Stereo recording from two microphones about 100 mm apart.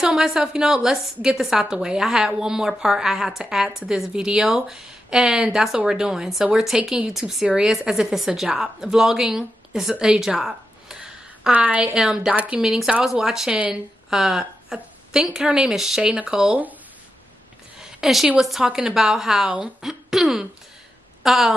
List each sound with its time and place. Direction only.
0.0 s a woman's voice: 5° right (ahead or behind)
17.7 s a woman's voice: 5° right (ahead or behind)